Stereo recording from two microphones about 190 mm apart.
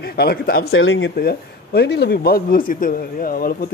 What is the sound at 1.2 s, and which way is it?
Speech, 55° left (ahead or behind).